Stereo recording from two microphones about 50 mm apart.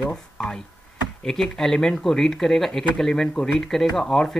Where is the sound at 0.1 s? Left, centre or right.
Centre.